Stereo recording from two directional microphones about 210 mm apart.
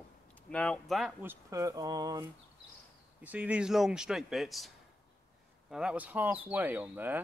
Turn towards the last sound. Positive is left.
turn(degrees=-10)  # may be behind; listen again after turning